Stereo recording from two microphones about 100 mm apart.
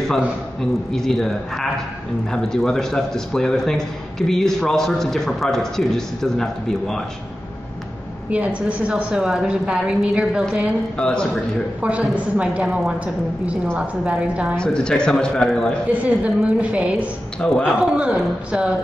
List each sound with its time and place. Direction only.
0.6 s a man's voice: 5° left (ahead or behind)
8.3 s a woman's voice: 15° right (ahead or behind)
11.0 s a man's voice: 5° left (ahead or behind)
11.8 s a woman's voice: 15° right (ahead or behind)
14.6 s a man's voice: 10° left (ahead or behind)
15.9 s a woman's voice: 15° right (ahead or behind)
17.4 s a man's voice: 10° left (ahead or behind)
17.9 s a woman's voice: 10° right (ahead or behind)